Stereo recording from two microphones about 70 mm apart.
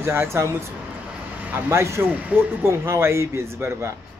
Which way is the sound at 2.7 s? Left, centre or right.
Right.